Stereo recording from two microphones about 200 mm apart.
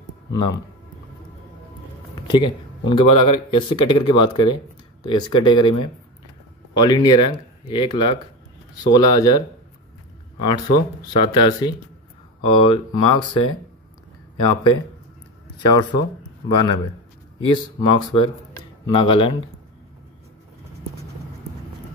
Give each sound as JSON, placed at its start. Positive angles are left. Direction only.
{"t": 0.3, "sound": "speech", "side_deg": 20}
{"t": 2.9, "sound": "speech", "side_deg": 25}
{"t": 10.4, "sound": "speech", "side_deg": 20}
{"t": 15.6, "sound": "speech", "side_deg": 20}